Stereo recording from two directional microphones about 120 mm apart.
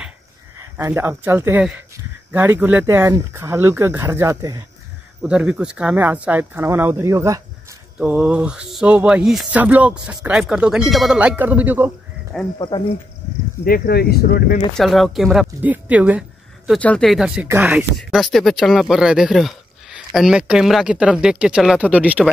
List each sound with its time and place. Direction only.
0.6 s speech: 20° right (ahead or behind)
5.2 s speech: 10° right (ahead or behind); by 7.4 s 25° right (ahead or behind)
8.0 s speech: 5° right (ahead or behind)
11.1 s speech: 15° right (ahead or behind)
12.5 s speech: 40° left (ahead or behind)
14.8 s speech: centre (ahead or behind)
15.6 s speech: 10° right (ahead or behind)
16.7 s speech: 5° left (ahead or behind); by 17.8 s 15° right (ahead or behind)
18.1 s speech: centre (ahead or behind)